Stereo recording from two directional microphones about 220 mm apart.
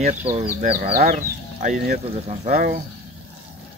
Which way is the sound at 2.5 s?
40° right (ahead or behind).